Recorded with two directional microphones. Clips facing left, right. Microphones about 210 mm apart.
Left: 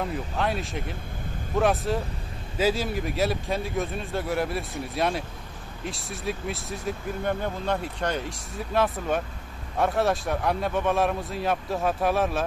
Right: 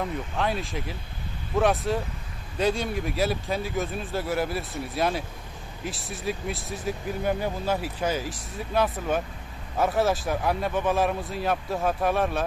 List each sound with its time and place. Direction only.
0.0 s speech: centre (ahead or behind)